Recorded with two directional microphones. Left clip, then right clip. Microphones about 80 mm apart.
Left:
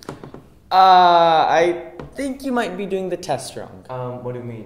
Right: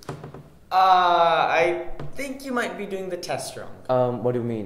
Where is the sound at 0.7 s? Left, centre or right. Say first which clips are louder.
Left 6 dB; left.